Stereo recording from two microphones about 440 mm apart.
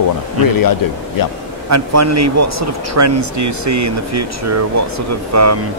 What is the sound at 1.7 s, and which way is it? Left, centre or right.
Speech, right.